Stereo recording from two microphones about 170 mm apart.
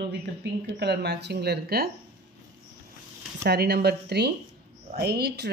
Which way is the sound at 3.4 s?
75° right (ahead or behind).